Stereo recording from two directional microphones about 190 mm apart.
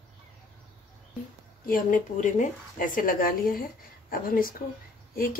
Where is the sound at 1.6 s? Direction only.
45° left (ahead or behind).